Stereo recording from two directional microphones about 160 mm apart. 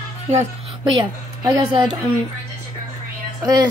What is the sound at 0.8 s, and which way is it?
A woman's voice, 25° right (ahead or behind).